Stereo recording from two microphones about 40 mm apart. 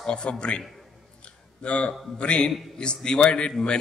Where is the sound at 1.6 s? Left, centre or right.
Left.